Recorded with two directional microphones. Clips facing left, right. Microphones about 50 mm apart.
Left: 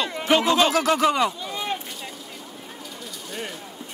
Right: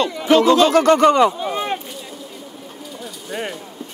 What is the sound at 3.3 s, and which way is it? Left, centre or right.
Mechanisms, centre.